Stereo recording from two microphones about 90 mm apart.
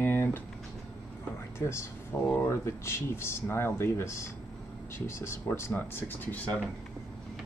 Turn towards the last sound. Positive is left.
turn(degrees=20)  # may be behind; listen again after turning